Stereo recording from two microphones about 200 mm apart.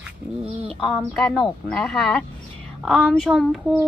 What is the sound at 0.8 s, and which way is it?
Speech, centre (ahead or behind).